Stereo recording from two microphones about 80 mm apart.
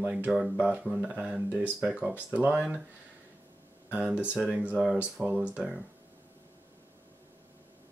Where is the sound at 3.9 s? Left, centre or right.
Centre.